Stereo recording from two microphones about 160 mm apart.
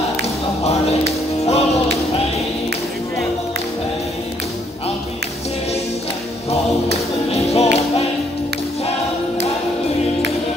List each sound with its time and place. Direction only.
1.4 s music: 40° left (ahead or behind)
6.5 s music: 40° left (ahead or behind)